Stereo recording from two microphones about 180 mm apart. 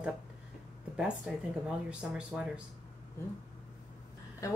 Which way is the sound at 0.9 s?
5° right (ahead or behind).